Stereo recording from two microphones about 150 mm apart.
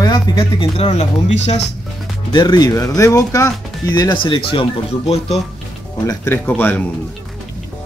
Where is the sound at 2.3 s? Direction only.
30° left (ahead or behind).